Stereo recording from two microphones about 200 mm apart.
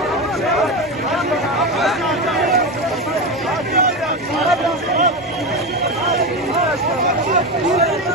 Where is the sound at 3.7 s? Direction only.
50° right (ahead or behind).